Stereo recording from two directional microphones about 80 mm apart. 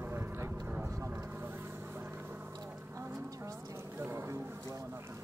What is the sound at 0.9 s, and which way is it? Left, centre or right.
Vehicle, right.